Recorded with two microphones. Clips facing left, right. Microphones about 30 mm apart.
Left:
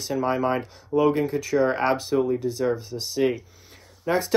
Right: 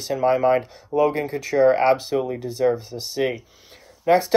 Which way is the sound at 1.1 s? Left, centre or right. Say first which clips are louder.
Right 1 dB; right.